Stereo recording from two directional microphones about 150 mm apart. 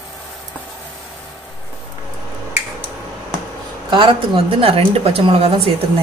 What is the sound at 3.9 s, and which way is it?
A woman's voice, 35° right (ahead or behind).